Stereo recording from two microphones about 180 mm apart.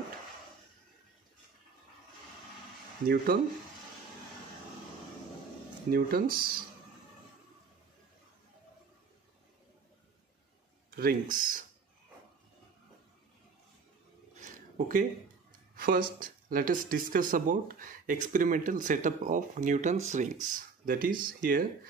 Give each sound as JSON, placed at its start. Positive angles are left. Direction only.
{"t": 5.9, "sound": "speech", "side_deg": -55}
{"t": 11.0, "sound": "speech", "side_deg": -55}
{"t": 14.4, "sound": "a sound", "side_deg": -45}
{"t": 15.7, "sound": "speech", "side_deg": -55}